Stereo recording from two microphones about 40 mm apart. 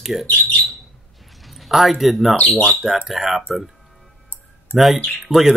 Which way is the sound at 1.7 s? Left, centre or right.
Centre.